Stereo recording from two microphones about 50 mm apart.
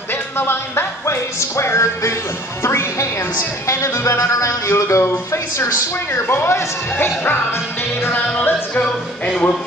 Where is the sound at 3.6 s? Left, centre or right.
Left.